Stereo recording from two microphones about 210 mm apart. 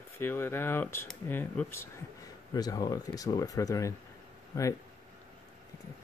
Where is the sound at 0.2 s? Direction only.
10° left (ahead or behind).